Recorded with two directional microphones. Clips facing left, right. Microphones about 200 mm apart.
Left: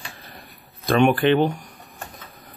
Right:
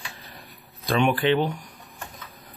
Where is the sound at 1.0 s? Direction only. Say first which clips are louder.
Left 4 dB; 55° left (ahead or behind).